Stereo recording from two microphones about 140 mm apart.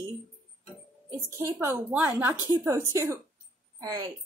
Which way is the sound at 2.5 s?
20° right (ahead or behind).